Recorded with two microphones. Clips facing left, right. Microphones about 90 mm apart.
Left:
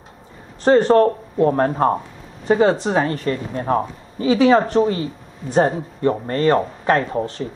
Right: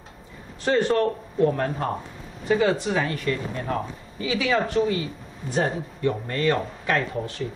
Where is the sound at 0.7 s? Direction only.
35° left (ahead or behind).